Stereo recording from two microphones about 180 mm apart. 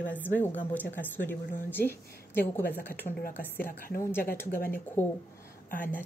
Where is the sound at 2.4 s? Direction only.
10° left (ahead or behind).